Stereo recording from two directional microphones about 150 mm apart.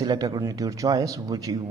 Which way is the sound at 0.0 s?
25° right (ahead or behind).